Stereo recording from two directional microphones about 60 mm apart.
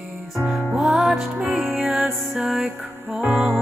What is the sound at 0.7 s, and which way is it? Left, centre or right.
Music, centre.